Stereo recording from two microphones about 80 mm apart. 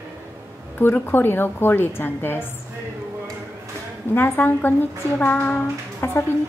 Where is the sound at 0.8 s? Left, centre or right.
Left.